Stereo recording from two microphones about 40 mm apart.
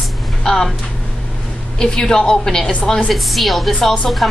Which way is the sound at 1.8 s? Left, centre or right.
Centre.